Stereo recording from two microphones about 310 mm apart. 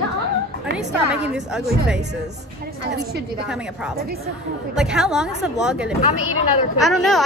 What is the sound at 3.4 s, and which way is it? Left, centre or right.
A woman's voice, centre.